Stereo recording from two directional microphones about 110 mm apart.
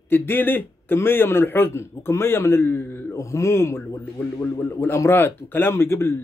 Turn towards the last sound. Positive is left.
turn(degrees=20)  # may be behind; listen again after turning